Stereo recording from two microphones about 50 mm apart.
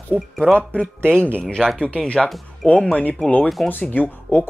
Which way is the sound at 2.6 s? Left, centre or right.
Left.